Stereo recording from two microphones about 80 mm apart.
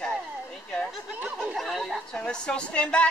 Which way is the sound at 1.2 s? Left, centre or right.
Centre.